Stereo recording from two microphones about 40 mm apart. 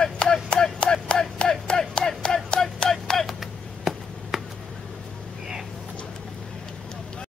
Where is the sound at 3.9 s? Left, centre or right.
Centre.